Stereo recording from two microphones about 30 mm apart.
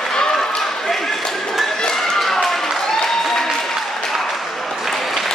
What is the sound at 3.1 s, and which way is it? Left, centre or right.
Applause, centre.